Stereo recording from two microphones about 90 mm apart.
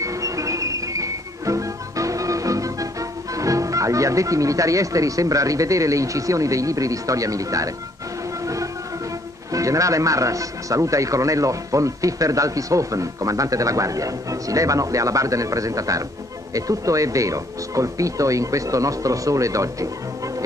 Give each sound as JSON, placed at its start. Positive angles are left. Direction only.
{"t": 0.0, "sound": "music", "side_deg": -35}
{"t": 9.5, "sound": "speech", "side_deg": -35}